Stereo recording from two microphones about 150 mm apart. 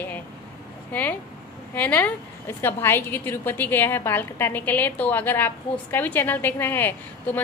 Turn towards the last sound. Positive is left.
turn(degrees=10)  # may be behind; listen again after turning